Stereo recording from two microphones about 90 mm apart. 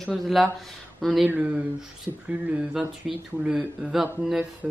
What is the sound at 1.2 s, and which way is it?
Speech, 15° right (ahead or behind).